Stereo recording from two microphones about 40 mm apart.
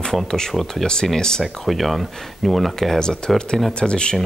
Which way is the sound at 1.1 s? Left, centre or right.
Centre.